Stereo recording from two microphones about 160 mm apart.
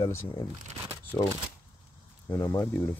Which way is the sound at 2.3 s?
20° left (ahead or behind).